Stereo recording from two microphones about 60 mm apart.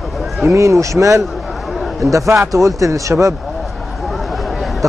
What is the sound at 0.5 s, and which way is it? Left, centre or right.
Speech, right.